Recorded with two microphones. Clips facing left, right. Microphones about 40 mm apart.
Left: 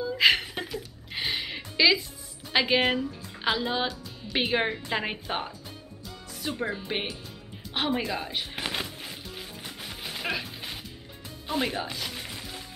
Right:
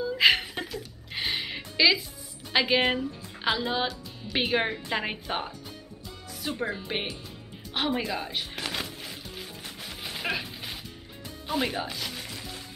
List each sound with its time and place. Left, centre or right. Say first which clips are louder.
0.0 s music: even; centre
2.5 s speech: even; centre
8.5 s a sound: left 2 dB; centre
8.8 s music: even; centre